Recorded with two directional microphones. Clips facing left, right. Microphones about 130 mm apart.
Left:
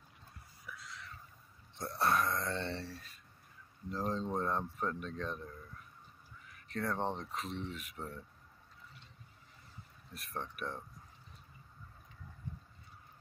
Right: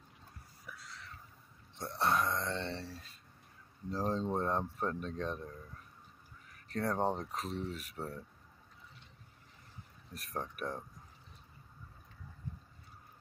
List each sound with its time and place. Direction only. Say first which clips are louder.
2.0 s a sound: even; 20° right (ahead or behind)
3.9 s speech: right 2 dB; 35° right (ahead or behind)
6.5 s speech: right 2 dB; 40° right (ahead or behind)
10.1 s speech: right 2 dB; 40° right (ahead or behind)